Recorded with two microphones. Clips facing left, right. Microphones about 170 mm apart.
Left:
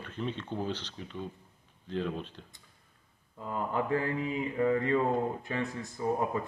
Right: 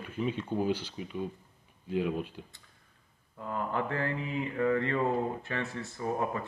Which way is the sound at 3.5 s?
15° left (ahead or behind).